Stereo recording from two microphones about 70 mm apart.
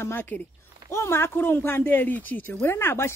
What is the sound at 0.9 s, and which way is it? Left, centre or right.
Speech, left.